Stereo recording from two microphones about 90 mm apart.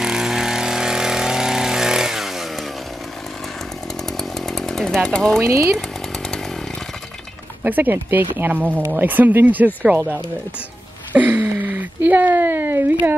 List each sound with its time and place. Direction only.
0.0 s vehicle: 5° right (ahead or behind)
4.2 s chainsaw: 5° left (ahead or behind)
5.4 s speech: 30° right (ahead or behind)
7.6 s speech: 20° right (ahead or behind)
11.1 s a sound: 15° right (ahead or behind)